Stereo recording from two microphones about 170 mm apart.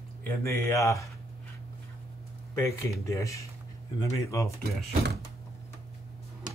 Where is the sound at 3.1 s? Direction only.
20° left (ahead or behind).